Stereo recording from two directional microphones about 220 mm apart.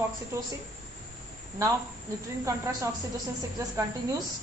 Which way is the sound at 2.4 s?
15° right (ahead or behind).